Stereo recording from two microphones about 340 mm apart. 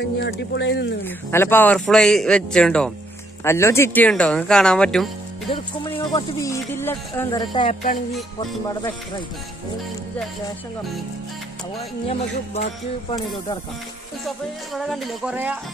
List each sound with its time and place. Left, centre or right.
0.2 s speech: left
1.0 s a man's voice: centre
5.5 s speech: centre
12.1 s speech: centre
14.7 s a man's voice: centre